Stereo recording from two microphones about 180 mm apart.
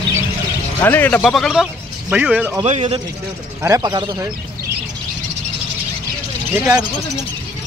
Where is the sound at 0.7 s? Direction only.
10° left (ahead or behind); by 2.5 s 5° right (ahead or behind).